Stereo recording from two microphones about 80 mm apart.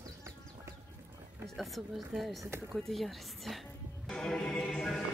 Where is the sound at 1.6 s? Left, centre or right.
Centre.